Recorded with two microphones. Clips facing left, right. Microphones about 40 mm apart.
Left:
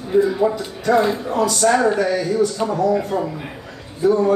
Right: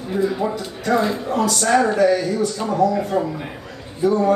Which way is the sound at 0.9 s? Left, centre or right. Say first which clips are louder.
Left 3 dB; centre.